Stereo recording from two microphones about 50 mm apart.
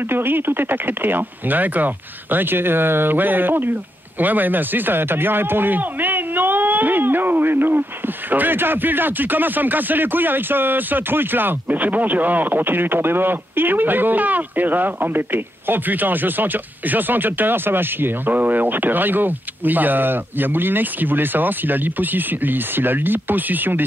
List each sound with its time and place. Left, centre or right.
0.1 s speech: right
2.3 s speech: right